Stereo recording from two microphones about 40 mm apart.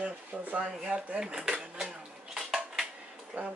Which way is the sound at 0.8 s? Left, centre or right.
Centre.